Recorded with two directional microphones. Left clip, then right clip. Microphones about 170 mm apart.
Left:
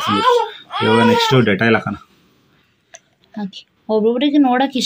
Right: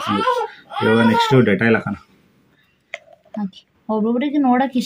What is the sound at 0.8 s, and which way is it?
A woman's voice, 10° left (ahead or behind).